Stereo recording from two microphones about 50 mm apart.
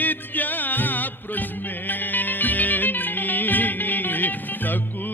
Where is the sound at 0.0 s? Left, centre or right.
Left.